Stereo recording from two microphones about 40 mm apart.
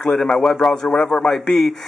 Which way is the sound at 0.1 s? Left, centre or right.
Centre.